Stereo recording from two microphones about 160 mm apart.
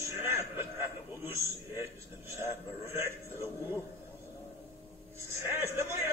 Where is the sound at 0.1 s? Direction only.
15° right (ahead or behind).